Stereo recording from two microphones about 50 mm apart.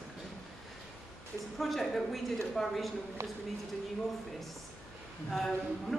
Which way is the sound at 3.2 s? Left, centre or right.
Right.